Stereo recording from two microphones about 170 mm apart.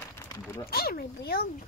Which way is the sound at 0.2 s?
15° left (ahead or behind).